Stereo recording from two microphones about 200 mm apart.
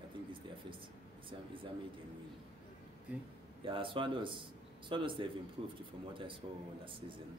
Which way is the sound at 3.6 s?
25° right (ahead or behind).